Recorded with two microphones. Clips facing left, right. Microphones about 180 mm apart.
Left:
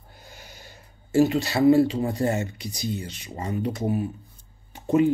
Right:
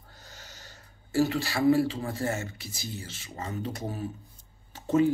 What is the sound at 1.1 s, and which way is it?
Speech, 20° left (ahead or behind).